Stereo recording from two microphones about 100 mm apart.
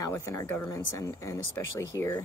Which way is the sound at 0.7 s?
35° left (ahead or behind).